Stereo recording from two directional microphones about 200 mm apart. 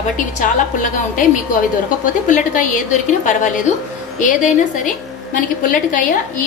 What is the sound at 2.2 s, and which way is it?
A woman's voice, 40° left (ahead or behind).